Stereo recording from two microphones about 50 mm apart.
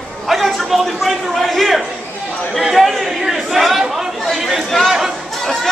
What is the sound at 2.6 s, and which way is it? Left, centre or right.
Chatter, centre.